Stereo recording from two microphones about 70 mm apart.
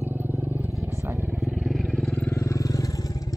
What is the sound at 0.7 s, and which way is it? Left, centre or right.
Vehicle, right.